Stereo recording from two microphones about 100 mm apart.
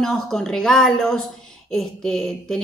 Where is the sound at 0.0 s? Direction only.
5° left (ahead or behind).